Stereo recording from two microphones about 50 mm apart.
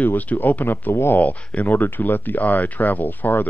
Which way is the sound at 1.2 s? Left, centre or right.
Left.